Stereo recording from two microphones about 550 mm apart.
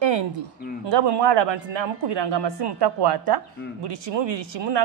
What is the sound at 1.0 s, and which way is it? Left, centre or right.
A woman's voice, right.